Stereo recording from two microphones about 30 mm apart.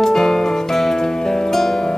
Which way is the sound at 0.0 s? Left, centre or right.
Centre.